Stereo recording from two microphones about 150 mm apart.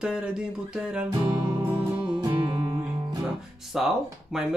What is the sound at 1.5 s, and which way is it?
Music, 30° right (ahead or behind).